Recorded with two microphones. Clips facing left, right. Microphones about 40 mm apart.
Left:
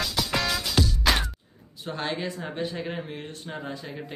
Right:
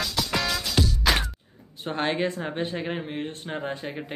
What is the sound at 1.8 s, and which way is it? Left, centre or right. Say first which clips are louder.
Speech: right 4 dB; right.